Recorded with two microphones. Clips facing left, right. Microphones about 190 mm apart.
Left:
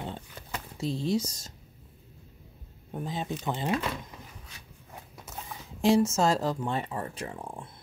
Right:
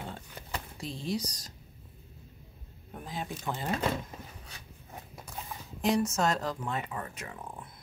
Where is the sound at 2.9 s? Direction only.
25° left (ahead or behind).